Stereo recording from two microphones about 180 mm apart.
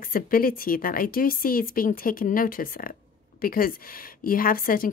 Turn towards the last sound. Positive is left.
turn(degrees=50)  # may be behind; listen again after turning